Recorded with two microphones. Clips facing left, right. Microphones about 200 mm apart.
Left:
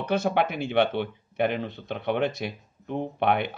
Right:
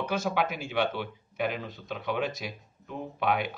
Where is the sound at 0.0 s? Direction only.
65° left (ahead or behind).